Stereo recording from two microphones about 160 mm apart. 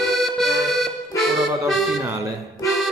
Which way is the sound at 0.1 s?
Centre (ahead or behind).